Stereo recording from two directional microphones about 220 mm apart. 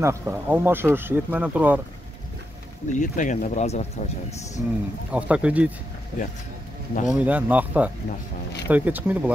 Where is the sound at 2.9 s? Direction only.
35° left (ahead or behind).